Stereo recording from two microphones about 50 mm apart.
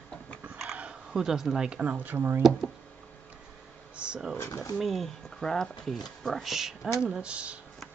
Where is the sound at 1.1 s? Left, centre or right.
Centre; by 2.4 s right.